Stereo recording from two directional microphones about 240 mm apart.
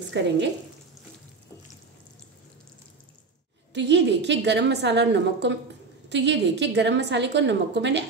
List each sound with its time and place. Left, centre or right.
0.2 s a woman's voice: right
3.7 s a woman's voice: right